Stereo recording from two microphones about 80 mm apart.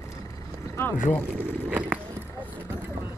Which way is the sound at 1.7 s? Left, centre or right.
Centre.